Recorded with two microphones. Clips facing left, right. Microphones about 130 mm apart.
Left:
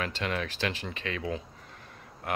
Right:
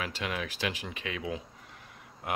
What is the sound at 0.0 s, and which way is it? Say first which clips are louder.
Speech: left 3 dB; 10° right (ahead or behind).